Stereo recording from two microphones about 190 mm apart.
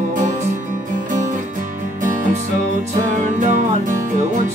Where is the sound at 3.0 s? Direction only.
40° right (ahead or behind).